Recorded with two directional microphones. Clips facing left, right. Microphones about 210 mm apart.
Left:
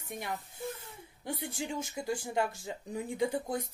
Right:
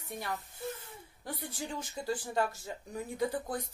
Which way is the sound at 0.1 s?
15° left (ahead or behind).